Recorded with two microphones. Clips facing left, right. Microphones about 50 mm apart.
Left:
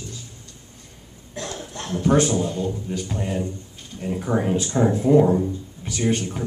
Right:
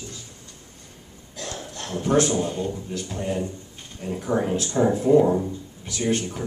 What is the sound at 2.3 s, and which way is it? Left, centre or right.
Speech, centre.